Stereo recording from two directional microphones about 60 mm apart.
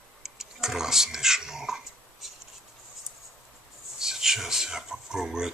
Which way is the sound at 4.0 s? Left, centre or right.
Centre.